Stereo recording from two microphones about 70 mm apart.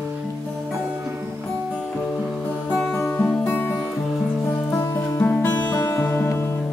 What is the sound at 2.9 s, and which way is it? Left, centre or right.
Music, left.